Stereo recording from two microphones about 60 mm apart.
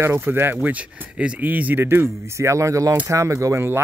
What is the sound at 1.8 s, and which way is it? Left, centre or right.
Speech, right.